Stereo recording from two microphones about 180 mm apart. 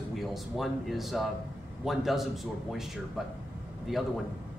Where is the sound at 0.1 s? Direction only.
Centre (ahead or behind).